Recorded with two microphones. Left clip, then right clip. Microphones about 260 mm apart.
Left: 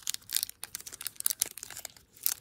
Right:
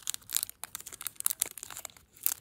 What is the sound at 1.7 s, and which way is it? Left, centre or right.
Crumpling, centre.